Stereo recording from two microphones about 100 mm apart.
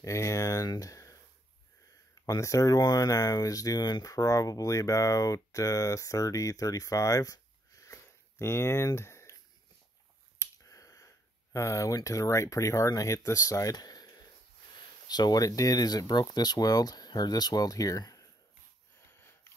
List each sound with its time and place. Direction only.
0.0 s speech: 30° left (ahead or behind)
2.2 s speech: 30° left (ahead or behind)
10.4 s speech: 30° left (ahead or behind)